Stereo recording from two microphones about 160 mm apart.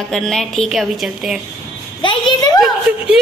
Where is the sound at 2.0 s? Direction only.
30° left (ahead or behind).